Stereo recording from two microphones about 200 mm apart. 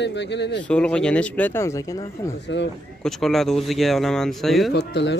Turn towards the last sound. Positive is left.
turn(degrees=60)  # may be behind; listen again after turning